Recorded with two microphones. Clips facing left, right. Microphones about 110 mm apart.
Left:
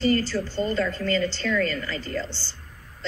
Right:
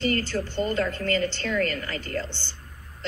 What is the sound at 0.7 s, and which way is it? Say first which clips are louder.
A woman's voice: left 1 dB; 50° right (ahead or behind).